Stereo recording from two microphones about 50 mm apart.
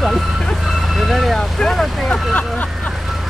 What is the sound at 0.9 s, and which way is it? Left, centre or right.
Speech, centre.